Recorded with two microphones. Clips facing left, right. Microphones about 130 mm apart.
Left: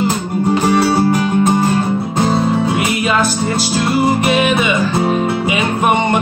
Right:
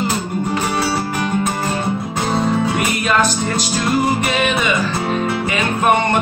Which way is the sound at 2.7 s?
5° left (ahead or behind).